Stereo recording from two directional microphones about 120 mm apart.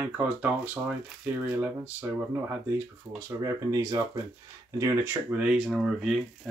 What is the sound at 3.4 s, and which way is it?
Speech, 30° right (ahead or behind).